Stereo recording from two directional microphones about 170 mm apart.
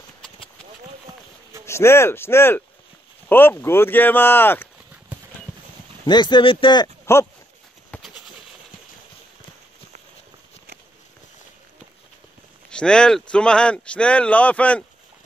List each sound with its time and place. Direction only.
1.7 s speech: 15° left (ahead or behind)
6.0 s speech: 25° left (ahead or behind)
7.9 s a sound: 10° left (ahead or behind)
12.6 s speech: 5° left (ahead or behind)